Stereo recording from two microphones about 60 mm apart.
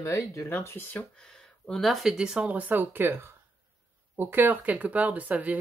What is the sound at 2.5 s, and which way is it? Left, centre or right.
Speech, right.